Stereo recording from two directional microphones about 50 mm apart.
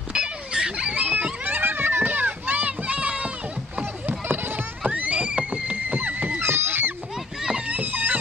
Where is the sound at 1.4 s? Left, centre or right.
Right.